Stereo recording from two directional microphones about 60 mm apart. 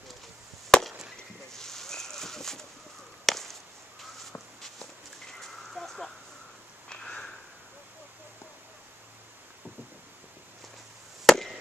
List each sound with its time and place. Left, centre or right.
0.7 s chop: centre
1.5 s a sound: centre
3.3 s chop: centre
4.3 s walk: centre
6.9 s sniff: centre
11.2 s chop: centre